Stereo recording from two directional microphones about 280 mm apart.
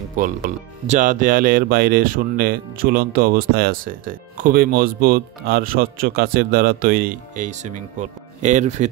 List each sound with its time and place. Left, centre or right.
0.2 s speech: right